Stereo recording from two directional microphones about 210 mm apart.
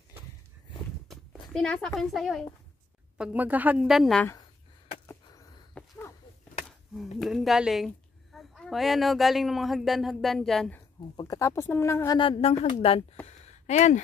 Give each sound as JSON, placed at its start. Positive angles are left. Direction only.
{"t": 1.0, "sound": "walk", "side_deg": 0}
{"t": 1.5, "sound": "a woman's voice", "side_deg": 5}
{"t": 5.0, "sound": "a sound", "side_deg": 15}
{"t": 7.2, "sound": "a woman's voice", "side_deg": 0}
{"t": 11.1, "sound": "speech", "side_deg": 15}
{"t": 12.2, "sound": "speech", "side_deg": 25}
{"t": 13.4, "sound": "a sound", "side_deg": 30}